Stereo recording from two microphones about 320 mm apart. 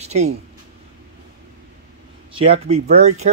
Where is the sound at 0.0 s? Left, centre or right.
Right.